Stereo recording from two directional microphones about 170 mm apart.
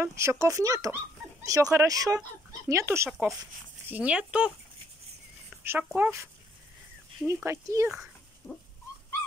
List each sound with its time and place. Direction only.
0.0 s speech: 15° right (ahead or behind)
3.1 s speech: 5° right (ahead or behind)
5.6 s speech: 15° right (ahead or behind)
7.4 s speech: 15° right (ahead or behind)
8.4 s a sound: 15° left (ahead or behind)